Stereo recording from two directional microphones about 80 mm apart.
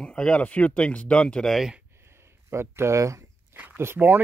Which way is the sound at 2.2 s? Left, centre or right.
Right.